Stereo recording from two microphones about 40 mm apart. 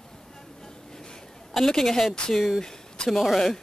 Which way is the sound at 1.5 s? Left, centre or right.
Centre.